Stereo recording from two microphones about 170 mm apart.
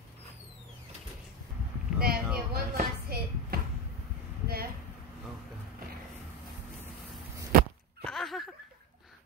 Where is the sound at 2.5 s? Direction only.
60° right (ahead or behind).